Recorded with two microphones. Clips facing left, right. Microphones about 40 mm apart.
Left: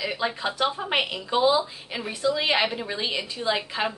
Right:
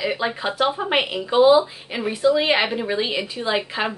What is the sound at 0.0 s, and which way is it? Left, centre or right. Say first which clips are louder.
Speech: right 4 dB; centre.